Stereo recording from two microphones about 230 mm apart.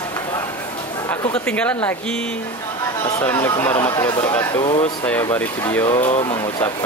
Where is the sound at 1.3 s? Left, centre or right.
Centre.